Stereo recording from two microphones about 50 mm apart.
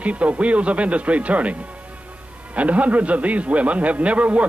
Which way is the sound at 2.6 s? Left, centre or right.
Right.